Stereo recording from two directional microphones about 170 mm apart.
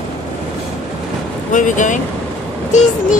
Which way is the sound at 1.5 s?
50° left (ahead or behind).